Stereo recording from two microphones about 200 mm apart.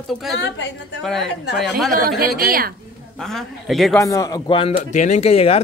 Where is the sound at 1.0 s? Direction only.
Centre (ahead or behind).